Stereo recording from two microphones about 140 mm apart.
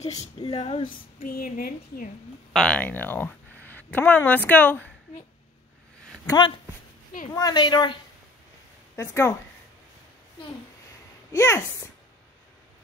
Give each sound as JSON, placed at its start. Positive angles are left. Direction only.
{"t": 0.0, "sound": "speech", "side_deg": 50}
{"t": 0.4, "sound": "speech", "side_deg": 40}
{"t": 1.2, "sound": "a woman's voice", "side_deg": 90}
{"t": 2.5, "sound": "speech", "side_deg": 5}
{"t": 6.2, "sound": "speech", "side_deg": 30}
{"t": 8.9, "sound": "a woman's voice", "side_deg": 20}
{"t": 11.3, "sound": "speech", "side_deg": 20}